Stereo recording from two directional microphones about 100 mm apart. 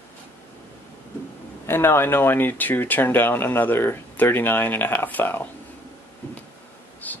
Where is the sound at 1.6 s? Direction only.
25° left (ahead or behind).